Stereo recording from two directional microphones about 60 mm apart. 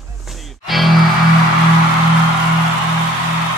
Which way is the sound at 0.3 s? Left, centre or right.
Centre.